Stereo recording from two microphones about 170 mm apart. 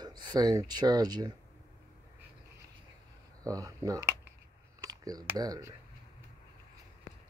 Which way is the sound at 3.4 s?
20° right (ahead or behind).